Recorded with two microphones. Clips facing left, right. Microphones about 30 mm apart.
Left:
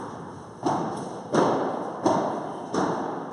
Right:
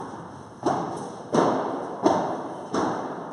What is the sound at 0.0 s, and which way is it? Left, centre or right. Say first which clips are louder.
Thump: even; centre.